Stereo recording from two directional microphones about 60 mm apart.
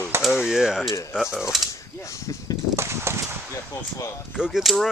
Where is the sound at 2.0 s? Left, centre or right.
Left.